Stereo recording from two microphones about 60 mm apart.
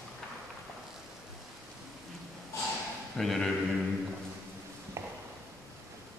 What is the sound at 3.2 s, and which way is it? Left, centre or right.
Speech, centre.